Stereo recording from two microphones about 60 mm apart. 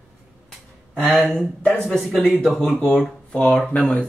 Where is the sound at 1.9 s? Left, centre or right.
Centre.